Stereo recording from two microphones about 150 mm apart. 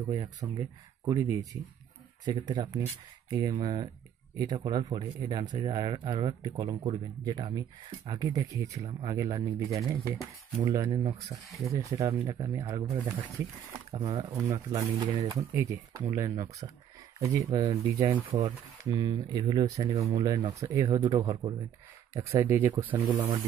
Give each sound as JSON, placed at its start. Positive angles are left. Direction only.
{"t": 0.0, "sound": "speech", "side_deg": -25}